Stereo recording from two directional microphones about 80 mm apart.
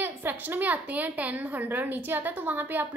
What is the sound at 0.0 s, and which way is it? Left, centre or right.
A woman's voice, right.